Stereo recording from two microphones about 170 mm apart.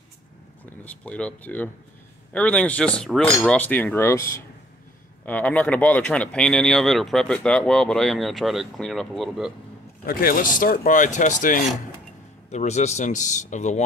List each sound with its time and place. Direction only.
0.8 s cutlery: 5° left (ahead or behind)
5.2 s speech: 10° left (ahead or behind)
10.0 s speech: 55° left (ahead or behind)